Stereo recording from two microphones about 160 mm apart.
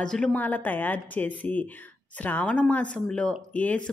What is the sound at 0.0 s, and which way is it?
Speech, 5° left (ahead or behind).